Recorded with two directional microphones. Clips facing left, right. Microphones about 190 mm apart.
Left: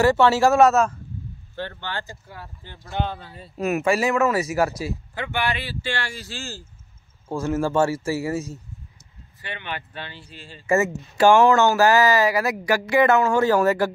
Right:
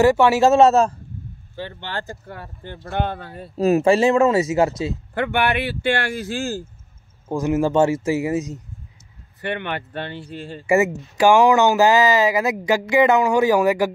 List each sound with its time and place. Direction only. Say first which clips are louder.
0.0 s speech: right 2 dB; 15° right (ahead or behind); by 0.9 s 30° right (ahead or behind)
1.5 s speech: even; 10° right (ahead or behind)
1.8 s speech: right 2 dB; 35° right (ahead or behind)
2.0 s speech: right 5 dB; 60° right (ahead or behind)
3.5 s speech: right 6 dB; 30° right (ahead or behind)
5.1 s speech: right 7 dB; 60° right (ahead or behind)
7.2 s speech: right 4 dB; 15° right (ahead or behind)
9.4 s speech: right 7 dB; 60° right (ahead or behind)
10.7 s speech: right 3 dB; 15° right (ahead or behind)